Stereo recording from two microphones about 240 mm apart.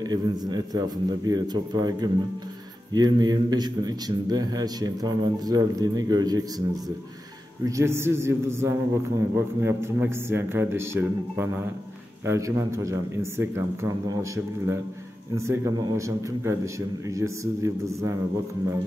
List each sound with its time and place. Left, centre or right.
0.0 s a man's voice: centre
7.6 s a man's voice: centre